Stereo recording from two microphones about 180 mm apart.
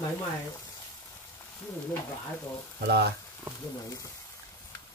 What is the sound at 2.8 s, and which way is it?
Speech, 65° right (ahead or behind).